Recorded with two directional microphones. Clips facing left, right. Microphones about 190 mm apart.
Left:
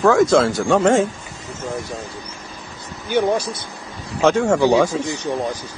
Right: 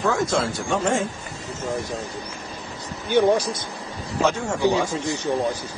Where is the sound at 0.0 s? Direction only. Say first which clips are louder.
Left 8 dB; 85° left.